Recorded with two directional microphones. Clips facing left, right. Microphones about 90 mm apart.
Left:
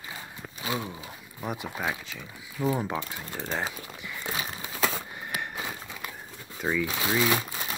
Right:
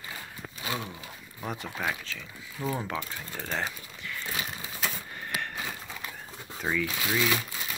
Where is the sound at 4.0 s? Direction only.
15° left (ahead or behind).